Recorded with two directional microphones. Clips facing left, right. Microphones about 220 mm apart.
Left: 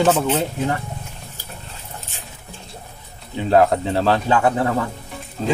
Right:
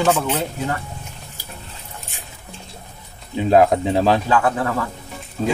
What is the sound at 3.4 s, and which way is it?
Speech, 15° right (ahead or behind).